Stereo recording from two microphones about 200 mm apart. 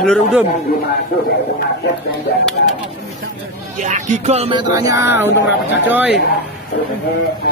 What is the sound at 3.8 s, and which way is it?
Speech, 35° right (ahead or behind).